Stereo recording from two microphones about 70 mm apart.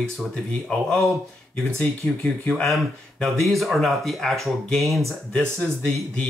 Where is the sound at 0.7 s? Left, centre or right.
Centre.